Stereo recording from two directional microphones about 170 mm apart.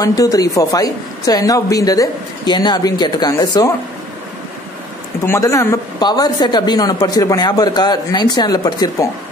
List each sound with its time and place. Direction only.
0.0 s a woman's voice: 20° left (ahead or behind)
5.3 s a woman's voice: 20° left (ahead or behind)